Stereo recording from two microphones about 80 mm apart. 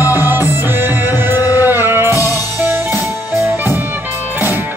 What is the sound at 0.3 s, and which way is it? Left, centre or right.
Music, right.